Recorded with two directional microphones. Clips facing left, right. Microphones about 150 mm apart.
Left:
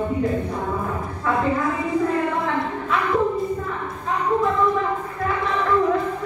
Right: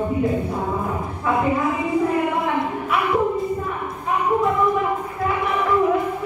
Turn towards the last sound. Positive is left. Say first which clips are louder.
# right 1 dB
turn(degrees=-15)  # may be behind; listen again after turning